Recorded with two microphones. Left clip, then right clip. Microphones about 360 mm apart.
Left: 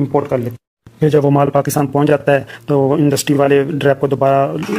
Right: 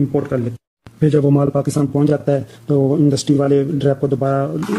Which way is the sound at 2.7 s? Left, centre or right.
Left.